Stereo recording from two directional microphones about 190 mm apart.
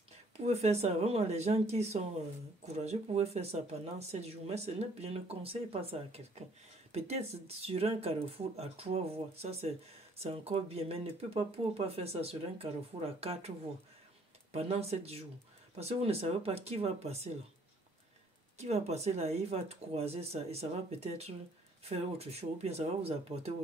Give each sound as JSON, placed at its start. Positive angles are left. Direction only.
{"t": 0.4, "sound": "speech", "side_deg": -35}
{"t": 14.5, "sound": "speech", "side_deg": -35}
{"t": 18.6, "sound": "speech", "side_deg": -35}